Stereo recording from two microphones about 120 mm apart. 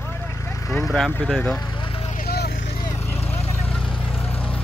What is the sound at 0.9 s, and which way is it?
Speech, centre (ahead or behind).